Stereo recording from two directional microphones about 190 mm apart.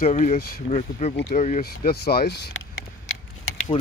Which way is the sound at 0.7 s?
40° left (ahead or behind).